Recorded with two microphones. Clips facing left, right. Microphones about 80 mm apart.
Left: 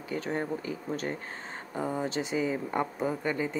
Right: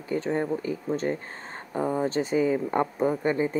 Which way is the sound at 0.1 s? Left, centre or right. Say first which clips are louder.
Right 5 dB; right.